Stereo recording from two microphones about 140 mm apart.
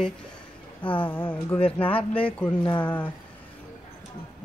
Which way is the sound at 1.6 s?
40° left (ahead or behind).